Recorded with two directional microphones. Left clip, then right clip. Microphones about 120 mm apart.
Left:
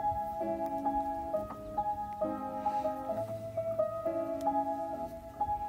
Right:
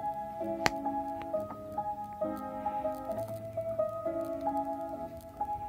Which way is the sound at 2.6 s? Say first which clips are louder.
Left 2 dB; 25° left (ahead or behind).